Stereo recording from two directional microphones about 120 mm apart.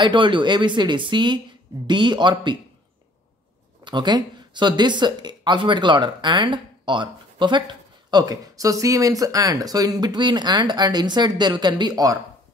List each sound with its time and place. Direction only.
0.0 s speech: 40° right (ahead or behind)
3.8 s speech: 40° right (ahead or behind)